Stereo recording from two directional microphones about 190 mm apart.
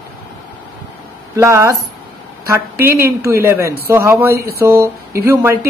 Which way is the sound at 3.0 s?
15° right (ahead or behind).